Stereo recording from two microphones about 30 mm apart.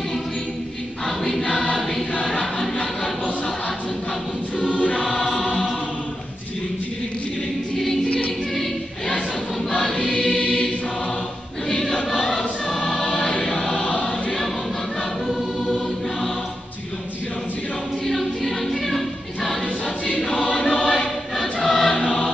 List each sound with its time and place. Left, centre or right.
2.2 s music: centre
4.9 s choir: centre
9.7 s choir: centre
12.4 s choir: centre
13.8 s choir: left
15.2 s choir: centre
18.0 s choir: centre
20.5 s choir: left
21.5 s choir: centre
21.9 s choir: left